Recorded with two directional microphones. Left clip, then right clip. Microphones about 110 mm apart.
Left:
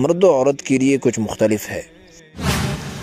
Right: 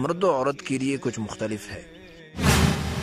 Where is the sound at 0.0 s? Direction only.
35° left (ahead or behind); by 1.8 s 55° left (ahead or behind).